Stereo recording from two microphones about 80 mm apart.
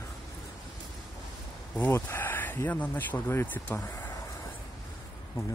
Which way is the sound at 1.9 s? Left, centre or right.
Left.